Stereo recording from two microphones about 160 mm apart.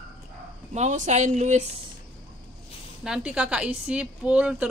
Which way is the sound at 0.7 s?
45° right (ahead or behind).